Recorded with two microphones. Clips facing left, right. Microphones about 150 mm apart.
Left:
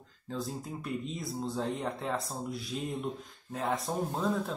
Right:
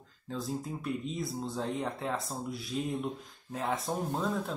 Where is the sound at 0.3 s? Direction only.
Centre (ahead or behind).